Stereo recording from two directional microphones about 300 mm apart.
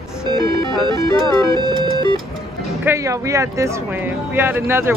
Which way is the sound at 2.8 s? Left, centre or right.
Centre.